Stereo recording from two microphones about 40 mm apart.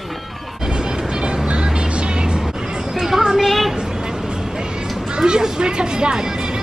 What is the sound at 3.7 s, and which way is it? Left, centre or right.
Vehicle, centre.